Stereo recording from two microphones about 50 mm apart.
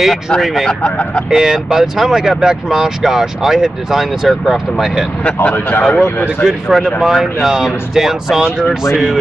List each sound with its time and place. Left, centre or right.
0.8 s speech: left
1.3 s speech: centre
5.2 s speech: left
6.4 s speech: centre